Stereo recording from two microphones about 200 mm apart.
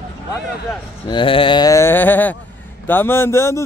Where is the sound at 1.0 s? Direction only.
25° left (ahead or behind); by 2.3 s 10° left (ahead or behind).